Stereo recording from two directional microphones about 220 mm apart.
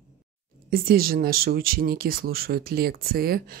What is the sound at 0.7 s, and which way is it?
Speech, 40° right (ahead or behind).